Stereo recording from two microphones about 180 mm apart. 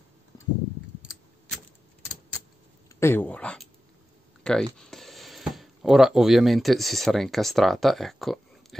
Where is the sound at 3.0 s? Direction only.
10° left (ahead or behind).